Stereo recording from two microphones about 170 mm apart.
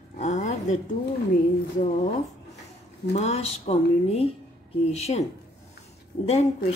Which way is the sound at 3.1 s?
40° left (ahead or behind).